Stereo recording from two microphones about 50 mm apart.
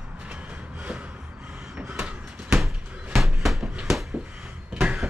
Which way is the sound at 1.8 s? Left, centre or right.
Right.